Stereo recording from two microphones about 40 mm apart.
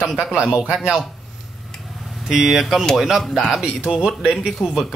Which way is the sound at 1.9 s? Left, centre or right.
Centre.